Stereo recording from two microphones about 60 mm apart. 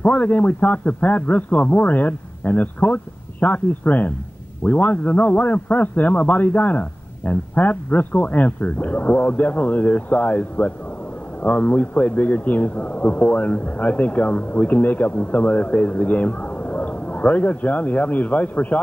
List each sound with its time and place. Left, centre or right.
0.0 s a man's voice: left